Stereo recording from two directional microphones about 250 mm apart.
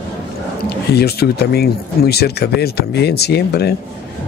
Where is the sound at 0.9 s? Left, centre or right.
Left.